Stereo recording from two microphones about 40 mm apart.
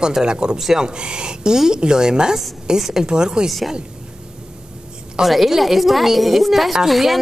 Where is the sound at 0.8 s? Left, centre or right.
Right.